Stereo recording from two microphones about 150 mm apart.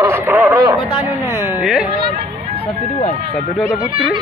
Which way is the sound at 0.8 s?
30° left (ahead or behind).